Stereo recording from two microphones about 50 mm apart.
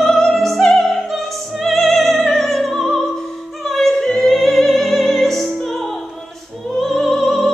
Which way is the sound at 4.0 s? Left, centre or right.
Centre.